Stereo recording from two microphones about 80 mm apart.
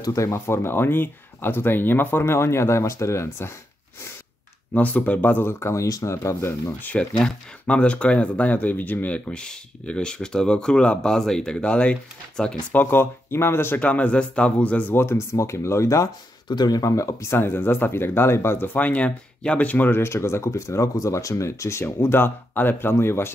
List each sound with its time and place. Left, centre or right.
0.0 s speech: left
4.7 s speech: centre; by 6.7 s left
6.8 s speech: centre
12.7 s speech: left
13.7 s speech: centre; by 16.1 s left
16.4 s speech: left